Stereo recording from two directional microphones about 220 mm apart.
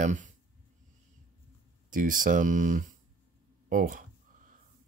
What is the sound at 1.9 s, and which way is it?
Speech, 40° right (ahead or behind).